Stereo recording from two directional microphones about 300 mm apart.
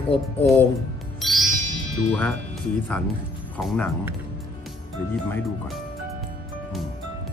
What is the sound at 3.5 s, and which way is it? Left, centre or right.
Speech, centre.